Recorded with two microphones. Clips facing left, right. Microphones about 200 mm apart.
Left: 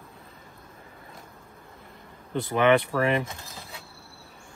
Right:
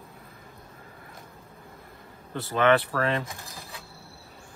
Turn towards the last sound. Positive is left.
turn(degrees=15)  # may be behind; listen again after turning